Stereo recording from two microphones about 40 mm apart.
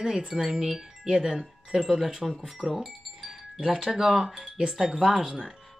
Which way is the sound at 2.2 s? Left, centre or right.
Centre.